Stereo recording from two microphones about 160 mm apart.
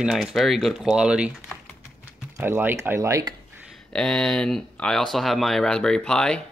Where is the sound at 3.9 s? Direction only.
5° left (ahead or behind).